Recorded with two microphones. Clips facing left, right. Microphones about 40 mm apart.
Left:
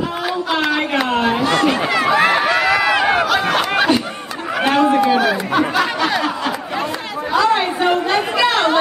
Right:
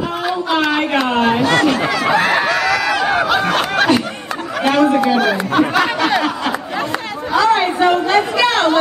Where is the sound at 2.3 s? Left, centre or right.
Centre.